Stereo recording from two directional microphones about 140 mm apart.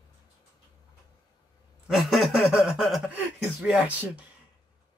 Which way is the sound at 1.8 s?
Centre (ahead or behind).